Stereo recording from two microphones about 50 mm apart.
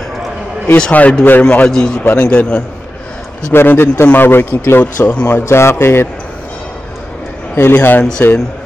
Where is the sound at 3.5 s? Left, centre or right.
Left.